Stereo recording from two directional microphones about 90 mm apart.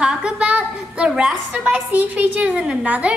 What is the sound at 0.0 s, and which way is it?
A woman's voice, 10° right (ahead or behind).